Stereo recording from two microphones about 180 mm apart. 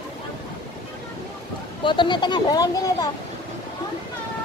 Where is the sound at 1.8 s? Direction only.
25° left (ahead or behind).